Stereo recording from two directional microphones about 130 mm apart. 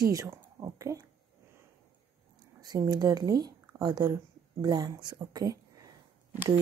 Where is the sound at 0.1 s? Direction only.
20° right (ahead or behind).